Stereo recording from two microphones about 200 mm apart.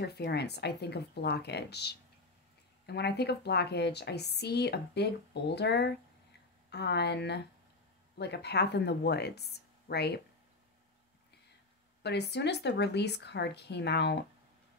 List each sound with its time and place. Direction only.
0.0 s speech: 55° left (ahead or behind)
12.0 s speech: 55° left (ahead or behind)